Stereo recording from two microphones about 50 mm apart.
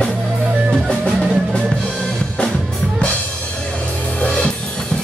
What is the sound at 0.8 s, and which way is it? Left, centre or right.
Music, centre.